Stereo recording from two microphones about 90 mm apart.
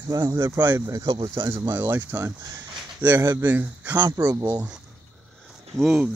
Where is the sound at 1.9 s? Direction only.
30° right (ahead or behind).